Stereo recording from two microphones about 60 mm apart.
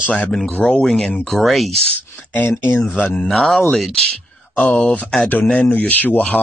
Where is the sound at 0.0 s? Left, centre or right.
Left.